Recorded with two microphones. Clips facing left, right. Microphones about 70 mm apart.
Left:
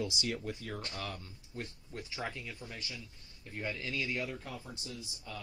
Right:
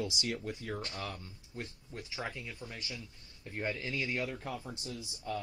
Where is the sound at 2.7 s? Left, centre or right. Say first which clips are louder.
Right 1 dB; right.